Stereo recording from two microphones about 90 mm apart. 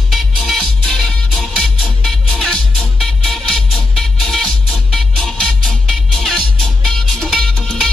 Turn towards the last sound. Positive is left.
turn(degrees=5)  # may be behind; listen again after turning